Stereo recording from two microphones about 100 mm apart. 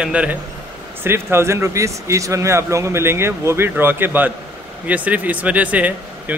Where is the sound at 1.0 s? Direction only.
25° right (ahead or behind).